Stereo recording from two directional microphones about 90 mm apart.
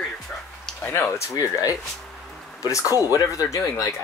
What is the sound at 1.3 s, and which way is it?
Speech, 40° left (ahead or behind).